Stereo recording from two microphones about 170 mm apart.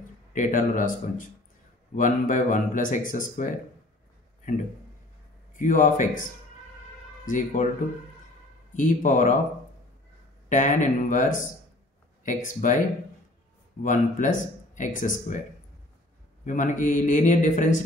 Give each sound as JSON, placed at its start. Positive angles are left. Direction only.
{"t": 0.3, "sound": "speech", "side_deg": 50}
{"t": 2.0, "sound": "speech", "side_deg": 50}
{"t": 5.6, "sound": "speech", "side_deg": 50}
{"t": 7.2, "sound": "speech", "side_deg": 50}
{"t": 8.7, "sound": "speech", "side_deg": 50}
{"t": 10.5, "sound": "speech", "side_deg": 45}
{"t": 13.8, "sound": "speech", "side_deg": 50}
{"t": 16.4, "sound": "speech", "side_deg": 45}